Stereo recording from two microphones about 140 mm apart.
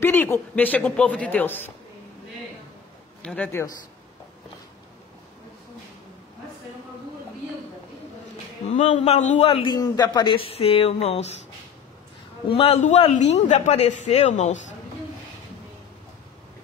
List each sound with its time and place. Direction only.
0.0 s speech: 15° left (ahead or behind)
3.2 s speech: 10° left (ahead or behind)
8.7 s speech: 60° left (ahead or behind)
9.5 s a man's voice: 40° left (ahead or behind)
9.8 s a man's voice: 30° left (ahead or behind); by 11.2 s 50° left (ahead or behind)
12.4 s a man's voice: 45° left (ahead or behind)